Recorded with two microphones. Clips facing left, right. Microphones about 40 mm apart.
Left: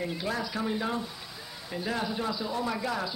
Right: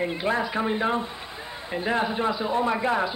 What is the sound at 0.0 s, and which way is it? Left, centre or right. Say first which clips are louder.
A man's voice: right 7 dB; right.